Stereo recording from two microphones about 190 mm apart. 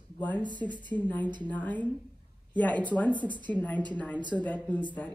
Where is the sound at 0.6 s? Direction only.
10° left (ahead or behind).